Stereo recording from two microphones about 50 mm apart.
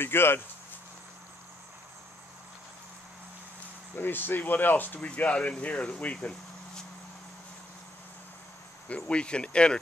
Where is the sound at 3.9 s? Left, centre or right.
Left.